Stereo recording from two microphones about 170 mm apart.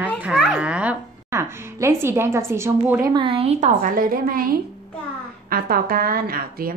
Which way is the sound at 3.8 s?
55° right (ahead or behind).